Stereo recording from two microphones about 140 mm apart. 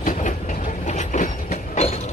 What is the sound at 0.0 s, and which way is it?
Train, 70° left (ahead or behind).